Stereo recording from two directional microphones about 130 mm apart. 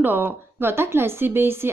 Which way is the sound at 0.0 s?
15° right (ahead or behind).